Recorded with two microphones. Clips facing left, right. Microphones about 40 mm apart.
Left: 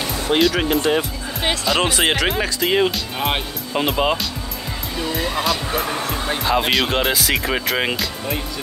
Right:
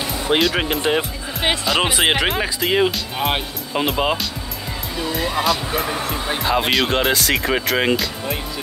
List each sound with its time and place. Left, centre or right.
0.0 s music: centre
0.6 s speech: centre